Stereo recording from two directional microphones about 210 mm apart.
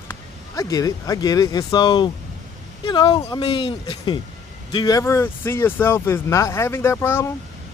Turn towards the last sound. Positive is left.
turn(degrees=10)  # may be behind; listen again after turning